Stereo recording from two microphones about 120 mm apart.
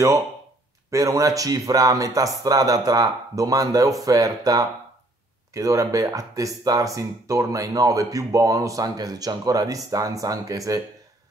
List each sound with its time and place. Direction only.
0.8 s speech: 30° right (ahead or behind)